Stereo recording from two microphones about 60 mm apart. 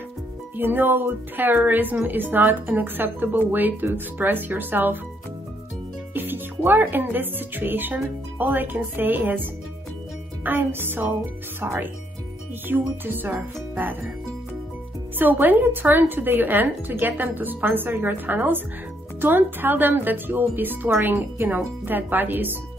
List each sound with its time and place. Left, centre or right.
0.6 s speech: right
6.1 s speech: right
15.1 s speech: right